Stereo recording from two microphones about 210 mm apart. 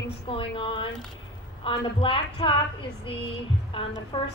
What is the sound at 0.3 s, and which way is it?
A woman's voice, 25° left (ahead or behind).